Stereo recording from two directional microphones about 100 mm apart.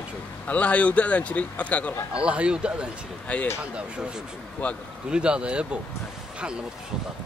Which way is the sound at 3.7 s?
10° right (ahead or behind).